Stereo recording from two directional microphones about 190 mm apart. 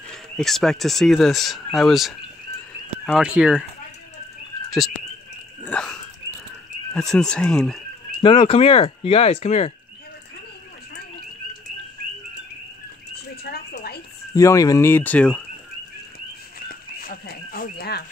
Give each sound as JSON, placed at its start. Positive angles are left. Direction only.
{"t": 0.1, "sound": "speech", "side_deg": 0}
{"t": 5.7, "sound": "dog", "side_deg": 5}
{"t": 6.9, "sound": "speech", "side_deg": 5}
{"t": 8.2, "sound": "speech", "side_deg": 30}
{"t": 13.4, "sound": "frog", "side_deg": 55}
{"t": 14.3, "sound": "speech", "side_deg": 15}
{"t": 16.5, "sound": "a sound", "side_deg": 50}